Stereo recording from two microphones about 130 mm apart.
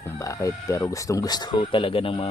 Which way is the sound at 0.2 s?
25° left (ahead or behind).